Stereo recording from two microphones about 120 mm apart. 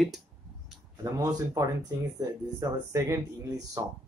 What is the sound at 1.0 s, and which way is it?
Speech, 25° right (ahead or behind).